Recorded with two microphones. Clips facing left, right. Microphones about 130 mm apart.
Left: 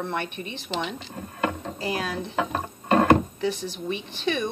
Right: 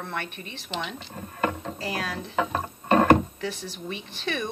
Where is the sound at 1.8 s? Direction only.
Centre (ahead or behind).